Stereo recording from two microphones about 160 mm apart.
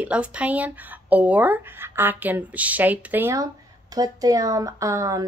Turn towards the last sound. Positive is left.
turn(degrees=-20)  # may be behind; listen again after turning